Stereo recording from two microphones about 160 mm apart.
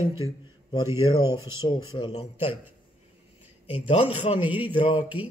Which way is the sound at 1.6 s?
25° left (ahead or behind).